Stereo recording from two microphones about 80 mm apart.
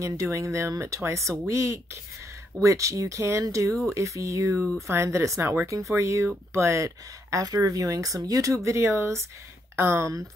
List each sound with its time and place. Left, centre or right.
0.0 s speech: right